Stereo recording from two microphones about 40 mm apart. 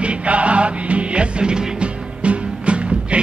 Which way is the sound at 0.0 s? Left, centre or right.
Right.